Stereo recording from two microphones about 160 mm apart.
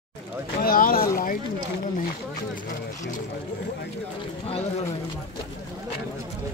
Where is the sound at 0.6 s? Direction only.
65° left (ahead or behind).